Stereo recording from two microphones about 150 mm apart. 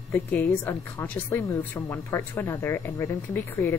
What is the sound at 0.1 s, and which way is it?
A woman's voice, 15° left (ahead or behind).